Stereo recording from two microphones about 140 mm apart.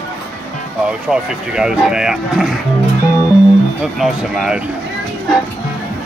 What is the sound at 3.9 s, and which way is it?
Speech, centre (ahead or behind).